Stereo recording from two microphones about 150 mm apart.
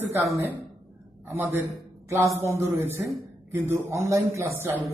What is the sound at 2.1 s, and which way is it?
A man's voice, 20° right (ahead or behind).